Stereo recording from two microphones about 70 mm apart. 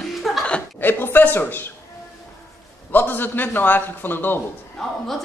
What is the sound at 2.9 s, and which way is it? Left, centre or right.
A man's voice, left.